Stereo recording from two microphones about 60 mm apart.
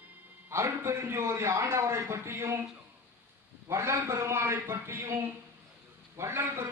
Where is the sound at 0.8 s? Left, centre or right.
Right.